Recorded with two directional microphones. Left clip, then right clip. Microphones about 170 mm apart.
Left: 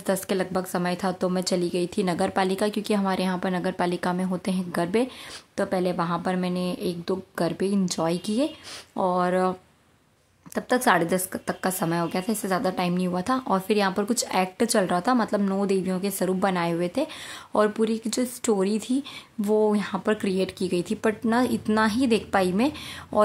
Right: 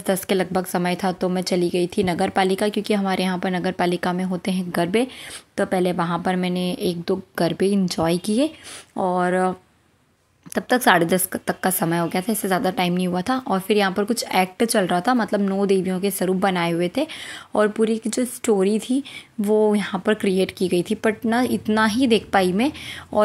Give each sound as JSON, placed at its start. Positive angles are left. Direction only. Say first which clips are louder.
{"t": 0.0, "sound": "a woman's voice", "louder": "right 4 dB", "side_deg": -15}